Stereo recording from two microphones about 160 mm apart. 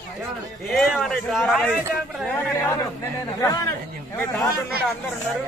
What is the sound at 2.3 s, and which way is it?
A man's voice, 15° left (ahead or behind).